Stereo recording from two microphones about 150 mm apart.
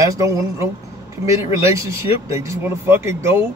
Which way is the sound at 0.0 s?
20° right (ahead or behind).